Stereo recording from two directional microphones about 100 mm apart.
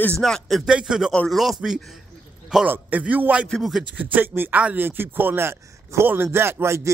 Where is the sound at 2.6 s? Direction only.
15° right (ahead or behind).